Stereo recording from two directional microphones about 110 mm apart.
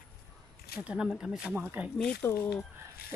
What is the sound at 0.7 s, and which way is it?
Speech, 10° right (ahead or behind).